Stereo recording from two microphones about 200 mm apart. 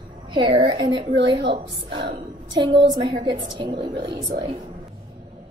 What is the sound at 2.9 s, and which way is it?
A woman's voice, 25° right (ahead or behind).